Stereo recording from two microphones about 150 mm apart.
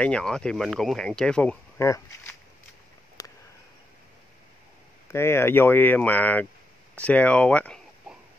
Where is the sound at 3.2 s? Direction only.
25° left (ahead or behind).